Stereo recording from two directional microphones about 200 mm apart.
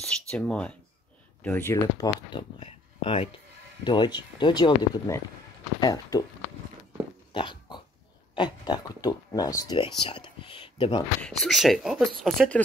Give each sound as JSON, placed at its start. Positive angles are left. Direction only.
{"t": 0.3, "sound": "speech", "side_deg": 5}
{"t": 2.6, "sound": "speech", "side_deg": 25}
{"t": 7.3, "sound": "pig", "side_deg": 25}
{"t": 8.4, "sound": "speech", "side_deg": 20}
{"t": 11.2, "sound": "speech", "side_deg": 0}